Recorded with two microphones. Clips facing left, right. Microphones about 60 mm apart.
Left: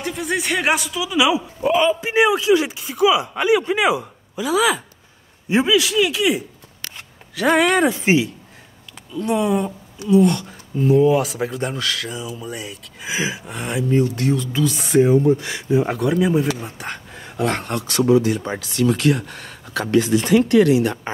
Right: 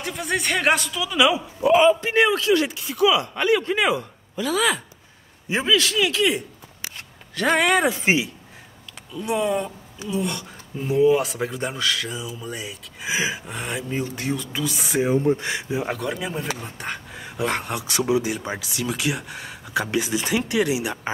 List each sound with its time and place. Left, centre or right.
0.0 s a woman's voice: centre
1.7 s speech: centre
2.0 s a woman's voice: centre
9.2 s a woman's voice: centre
14.1 s a woman's voice: centre
15.2 s speech: right
15.7 s a woman's voice: centre